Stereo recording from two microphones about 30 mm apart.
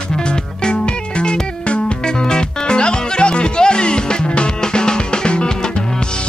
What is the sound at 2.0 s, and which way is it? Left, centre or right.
Music, left.